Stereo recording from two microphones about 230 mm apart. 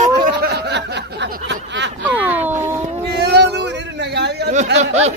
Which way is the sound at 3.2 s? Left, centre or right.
Right.